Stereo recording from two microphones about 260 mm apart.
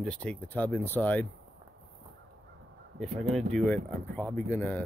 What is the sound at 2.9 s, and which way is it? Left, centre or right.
Speech, centre.